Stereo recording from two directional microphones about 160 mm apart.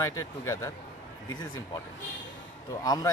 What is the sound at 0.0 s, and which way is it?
Speech, 20° left (ahead or behind).